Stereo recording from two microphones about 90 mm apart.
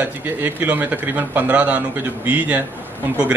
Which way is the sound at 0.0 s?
20° right (ahead or behind).